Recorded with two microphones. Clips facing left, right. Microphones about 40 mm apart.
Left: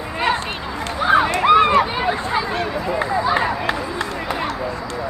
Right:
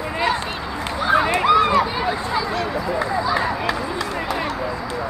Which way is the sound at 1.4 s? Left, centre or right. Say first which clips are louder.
Left 2 dB; left.